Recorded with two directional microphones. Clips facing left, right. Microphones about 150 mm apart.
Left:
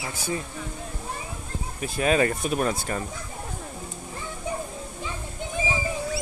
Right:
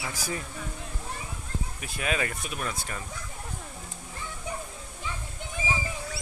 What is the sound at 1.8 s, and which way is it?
Speech, 35° left (ahead or behind).